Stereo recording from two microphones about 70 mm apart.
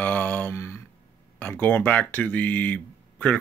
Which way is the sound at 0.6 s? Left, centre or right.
Left.